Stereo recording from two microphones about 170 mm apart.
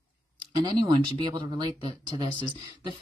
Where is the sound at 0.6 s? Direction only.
25° right (ahead or behind).